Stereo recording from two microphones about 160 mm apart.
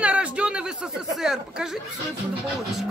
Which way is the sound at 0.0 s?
5° right (ahead or behind).